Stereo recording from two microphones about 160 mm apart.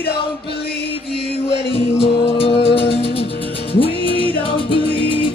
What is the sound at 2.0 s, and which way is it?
Music, 35° left (ahead or behind).